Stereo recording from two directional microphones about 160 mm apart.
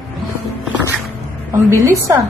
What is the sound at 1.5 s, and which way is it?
Speech, 20° right (ahead or behind).